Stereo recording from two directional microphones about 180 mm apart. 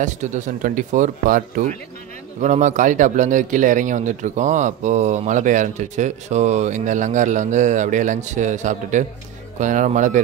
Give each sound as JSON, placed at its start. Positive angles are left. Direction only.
{"t": 0.0, "sound": "speech", "side_deg": -45}